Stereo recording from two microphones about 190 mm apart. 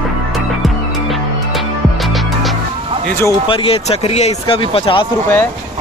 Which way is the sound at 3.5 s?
30° left (ahead or behind).